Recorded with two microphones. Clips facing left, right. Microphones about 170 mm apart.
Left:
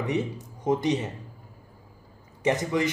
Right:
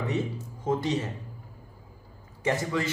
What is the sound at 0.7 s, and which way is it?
Speech, 15° left (ahead or behind).